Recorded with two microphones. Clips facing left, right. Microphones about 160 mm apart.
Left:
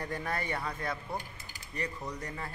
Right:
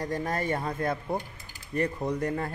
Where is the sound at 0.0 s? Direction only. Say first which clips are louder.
Right 6 dB; 40° right (ahead or behind).